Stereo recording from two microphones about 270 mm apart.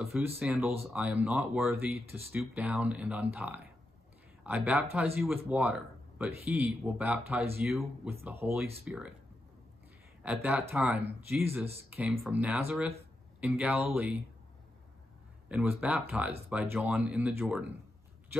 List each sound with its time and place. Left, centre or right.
0.0 s speech: centre
10.2 s speech: centre
15.4 s speech: centre